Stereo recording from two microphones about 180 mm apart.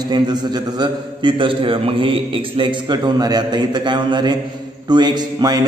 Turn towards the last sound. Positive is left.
turn(degrees=-25)  # may be behind; listen again after turning